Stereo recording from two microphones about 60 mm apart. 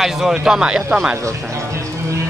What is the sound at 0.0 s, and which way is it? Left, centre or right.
Speech, centre.